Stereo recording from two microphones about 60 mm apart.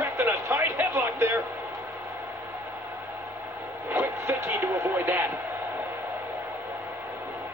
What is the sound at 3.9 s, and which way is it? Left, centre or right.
Vehicle, right.